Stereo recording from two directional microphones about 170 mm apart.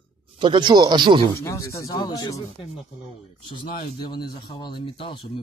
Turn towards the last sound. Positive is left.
turn(degrees=30)  # may be behind; listen again after turning